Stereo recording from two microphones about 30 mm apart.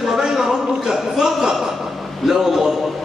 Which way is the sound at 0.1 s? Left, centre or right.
Centre.